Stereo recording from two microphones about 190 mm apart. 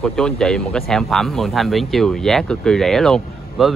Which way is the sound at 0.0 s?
5° left (ahead or behind).